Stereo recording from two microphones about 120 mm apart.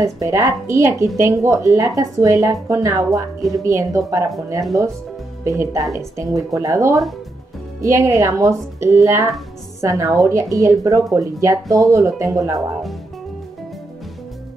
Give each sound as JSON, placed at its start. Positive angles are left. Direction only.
{"t": 0.0, "sound": "a woman's voice", "side_deg": -25}
{"t": 5.4, "sound": "a woman's voice", "side_deg": -25}